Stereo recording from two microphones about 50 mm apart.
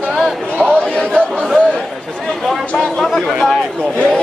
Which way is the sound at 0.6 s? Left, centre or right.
Left.